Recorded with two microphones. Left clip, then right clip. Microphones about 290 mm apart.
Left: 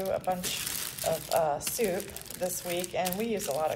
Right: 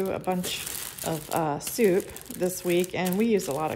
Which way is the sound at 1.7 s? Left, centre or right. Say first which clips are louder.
Right 7 dB; right.